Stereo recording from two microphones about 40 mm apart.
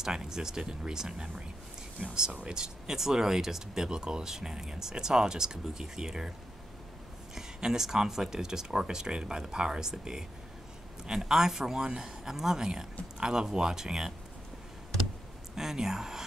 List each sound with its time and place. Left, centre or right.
0.0 s speech: centre
2.0 s speech: right
2.4 s speech: centre
7.3 s speech: centre
11.2 s speech: centre
15.5 s speech: centre